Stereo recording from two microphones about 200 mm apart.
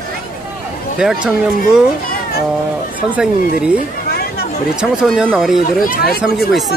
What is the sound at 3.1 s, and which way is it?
Speech, 5° right (ahead or behind).